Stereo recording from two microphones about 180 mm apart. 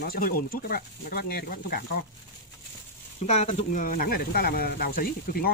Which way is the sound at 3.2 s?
35° left (ahead or behind).